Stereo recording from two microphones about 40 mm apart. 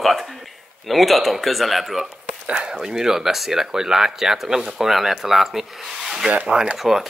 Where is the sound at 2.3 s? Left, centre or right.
Right.